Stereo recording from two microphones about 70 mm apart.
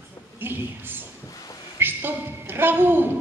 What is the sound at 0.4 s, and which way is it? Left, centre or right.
Speech, right.